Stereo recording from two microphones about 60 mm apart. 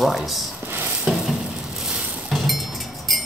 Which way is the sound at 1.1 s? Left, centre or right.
Centre.